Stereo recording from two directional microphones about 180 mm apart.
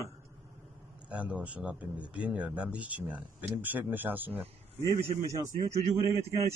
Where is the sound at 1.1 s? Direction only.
5° right (ahead or behind).